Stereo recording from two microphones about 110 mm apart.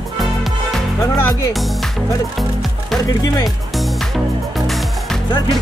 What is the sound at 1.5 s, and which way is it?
Speech, centre (ahead or behind).